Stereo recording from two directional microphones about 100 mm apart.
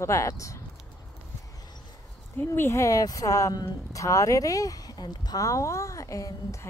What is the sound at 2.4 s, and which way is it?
Speech, 25° left (ahead or behind).